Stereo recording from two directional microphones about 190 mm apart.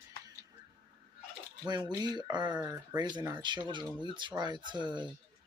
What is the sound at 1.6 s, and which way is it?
Speech, 20° right (ahead or behind).